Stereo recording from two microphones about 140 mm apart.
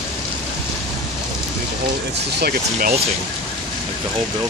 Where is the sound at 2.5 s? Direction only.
90° right.